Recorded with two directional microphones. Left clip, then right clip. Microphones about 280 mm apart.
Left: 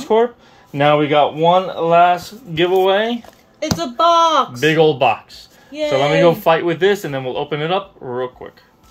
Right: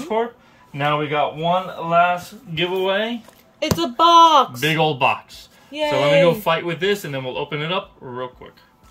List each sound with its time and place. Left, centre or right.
0.1 s a man's voice: left; by 3.1 s centre
3.5 s speech: right
4.7 s speech: centre